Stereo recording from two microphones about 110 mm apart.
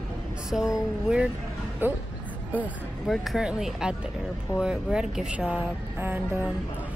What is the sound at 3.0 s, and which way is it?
Speech, centre (ahead or behind).